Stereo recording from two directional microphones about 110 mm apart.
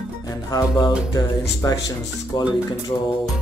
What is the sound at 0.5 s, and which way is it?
Speech, 35° left (ahead or behind).